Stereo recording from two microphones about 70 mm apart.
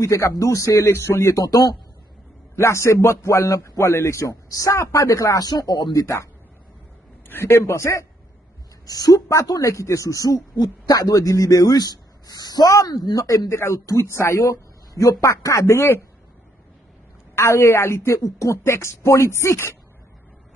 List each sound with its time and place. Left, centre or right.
0.0 s speech: left
2.5 s speech: left
5.4 s speech: left
7.2 s speech: left
8.8 s a woman's voice: left
9.5 s speech: left
12.6 s speech: left
13.5 s speech: left
17.4 s a woman's voice: left